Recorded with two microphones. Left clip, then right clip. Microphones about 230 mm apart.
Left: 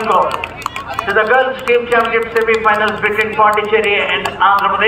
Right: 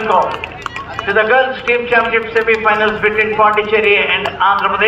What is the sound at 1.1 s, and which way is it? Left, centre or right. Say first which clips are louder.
A man's voice: even; centre.